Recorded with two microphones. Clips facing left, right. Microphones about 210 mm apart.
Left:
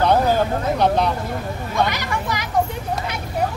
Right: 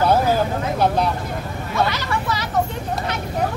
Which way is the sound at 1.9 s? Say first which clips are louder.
Right 1 dB; 15° left (ahead or behind).